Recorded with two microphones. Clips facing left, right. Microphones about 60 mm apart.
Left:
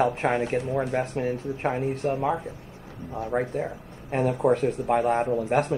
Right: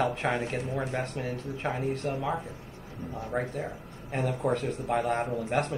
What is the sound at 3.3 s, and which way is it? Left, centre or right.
Speech, left.